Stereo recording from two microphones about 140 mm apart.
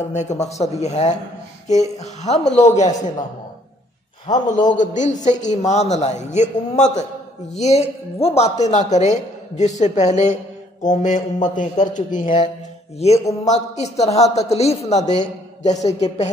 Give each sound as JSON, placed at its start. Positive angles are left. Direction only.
{"t": 0.1, "sound": "a woman's voice", "side_deg": 55}
{"t": 4.6, "sound": "a woman's voice", "side_deg": 65}
{"t": 13.0, "sound": "a woman's voice", "side_deg": 50}